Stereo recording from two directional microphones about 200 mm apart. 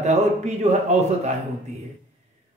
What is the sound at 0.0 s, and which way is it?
Speech, 35° right (ahead or behind).